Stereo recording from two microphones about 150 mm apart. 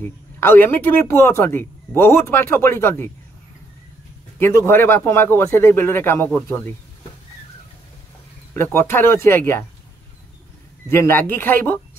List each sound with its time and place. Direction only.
0.0 s speech: 15° left (ahead or behind)
4.4 s speech: 15° left (ahead or behind)
8.5 s speech: 15° left (ahead or behind)
10.9 s speech: 15° left (ahead or behind)